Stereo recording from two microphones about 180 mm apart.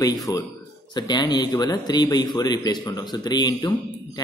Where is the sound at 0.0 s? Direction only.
20° left (ahead or behind).